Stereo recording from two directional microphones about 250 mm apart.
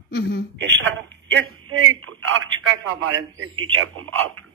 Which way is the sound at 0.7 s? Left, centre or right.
Right.